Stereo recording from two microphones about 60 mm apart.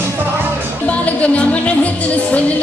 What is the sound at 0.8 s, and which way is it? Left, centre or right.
Music, left.